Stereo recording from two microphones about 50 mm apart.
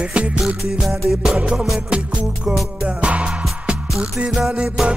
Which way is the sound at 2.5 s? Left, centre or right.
Centre.